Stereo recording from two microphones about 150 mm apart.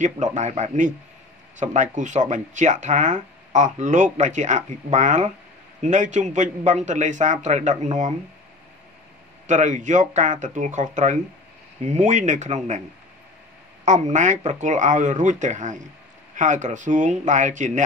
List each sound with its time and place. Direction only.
0.0 s a man's voice: 55° right (ahead or behind)
9.5 s a man's voice: 55° right (ahead or behind)
13.8 s speech: 55° right (ahead or behind)